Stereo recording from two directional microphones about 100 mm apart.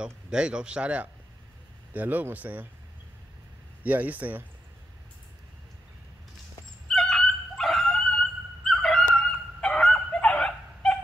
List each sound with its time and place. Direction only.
0.0 s a man's voice: 10° right (ahead or behind)
3.8 s a man's voice: 15° right (ahead or behind)
6.9 s dog: 5° left (ahead or behind)